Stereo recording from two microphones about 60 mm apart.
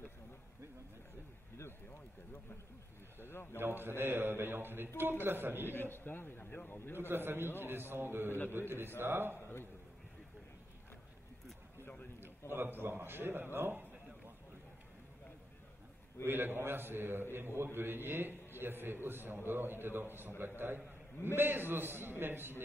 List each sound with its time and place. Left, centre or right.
3.2 s a man's voice: left
3.5 s a man's voice: right
5.7 s a man's voice: left
7.0 s a man's voice: right
12.2 s a man's voice: right
16.3 s a man's voice: right